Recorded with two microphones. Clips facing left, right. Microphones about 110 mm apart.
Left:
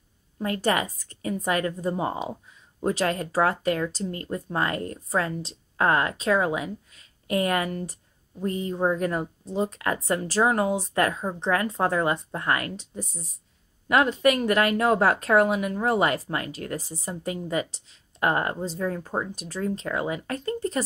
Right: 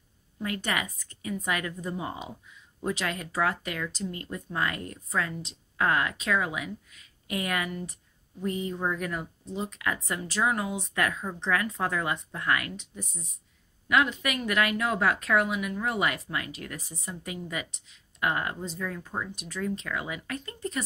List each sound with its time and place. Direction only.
0.4 s speech: 35° left (ahead or behind)